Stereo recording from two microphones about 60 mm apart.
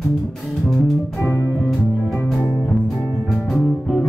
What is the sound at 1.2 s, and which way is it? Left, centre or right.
Music, left.